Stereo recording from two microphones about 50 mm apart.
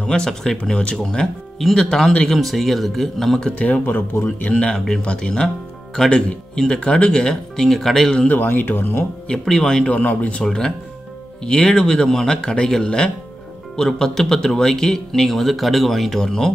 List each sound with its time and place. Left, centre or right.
0.0 s speech: centre
1.0 s speech: centre
3.5 s speech: left
3.8 s speech: left
4.6 s speech: centre
8.3 s speech: left
9.3 s speech: centre
9.8 s speech: left
11.4 s speech: centre